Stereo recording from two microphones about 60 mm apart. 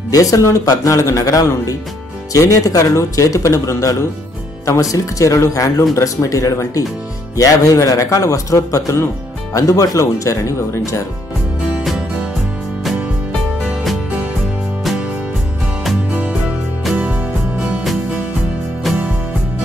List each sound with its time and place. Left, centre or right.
0.1 s speech: left
7.3 s speech: left
16.1 s music: right
18.9 s music: centre